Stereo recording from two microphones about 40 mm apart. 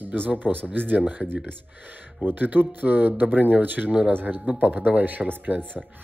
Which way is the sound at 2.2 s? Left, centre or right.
Right.